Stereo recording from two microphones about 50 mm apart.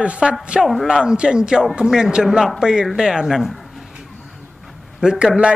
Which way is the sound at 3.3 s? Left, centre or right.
Centre.